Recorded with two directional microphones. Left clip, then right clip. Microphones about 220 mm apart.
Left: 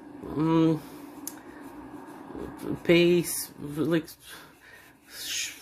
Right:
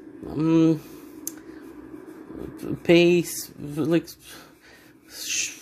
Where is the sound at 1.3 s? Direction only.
15° right (ahead or behind).